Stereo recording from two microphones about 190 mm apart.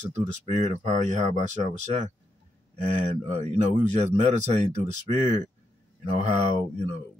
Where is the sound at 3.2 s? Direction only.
35° right (ahead or behind).